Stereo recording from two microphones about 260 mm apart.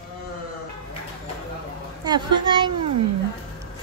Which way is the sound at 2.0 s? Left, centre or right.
Centre.